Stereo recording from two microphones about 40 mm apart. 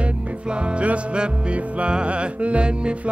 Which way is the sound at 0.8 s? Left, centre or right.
Right.